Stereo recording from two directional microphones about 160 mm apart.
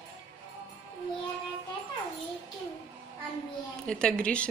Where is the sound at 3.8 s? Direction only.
5° left (ahead or behind).